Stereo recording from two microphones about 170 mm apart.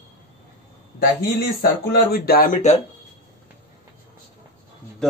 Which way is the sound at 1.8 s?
65° left (ahead or behind).